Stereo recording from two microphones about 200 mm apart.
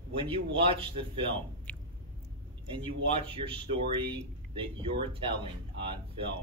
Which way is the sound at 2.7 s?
25° right (ahead or behind).